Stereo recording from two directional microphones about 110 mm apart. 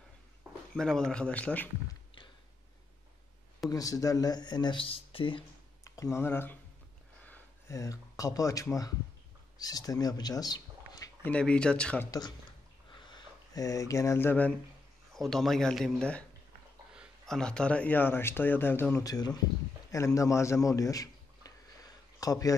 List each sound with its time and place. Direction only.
0.7 s speech: 5° left (ahead or behind)
3.7 s speech: 35° left (ahead or behind); by 5.4 s 55° left (ahead or behind)
5.9 s speech: 30° left (ahead or behind)
7.2 s a sound: 15° left (ahead or behind)
7.7 s speech: 30° left (ahead or behind)
11.2 s speech: 10° left (ahead or behind)
12.1 s speech: 40° left (ahead or behind); by 14.5 s 15° left (ahead or behind)
15.1 s a man's voice: centre (ahead or behind)
17.3 s speech: 5° left (ahead or behind)
19.0 s a man's voice: 35° left (ahead or behind)